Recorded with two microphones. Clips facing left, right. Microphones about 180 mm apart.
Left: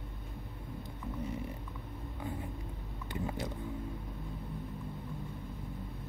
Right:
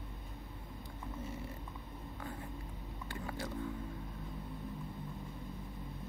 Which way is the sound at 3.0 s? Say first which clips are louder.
Left 5 dB; 20° left (ahead or behind).